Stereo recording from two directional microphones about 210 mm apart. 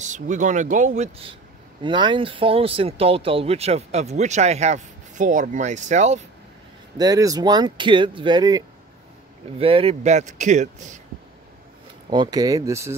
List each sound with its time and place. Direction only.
0.0 s speech: 35° right (ahead or behind)
7.0 s speech: 15° right (ahead or behind); by 11.0 s 35° right (ahead or behind)
12.1 s speech: 20° right (ahead or behind)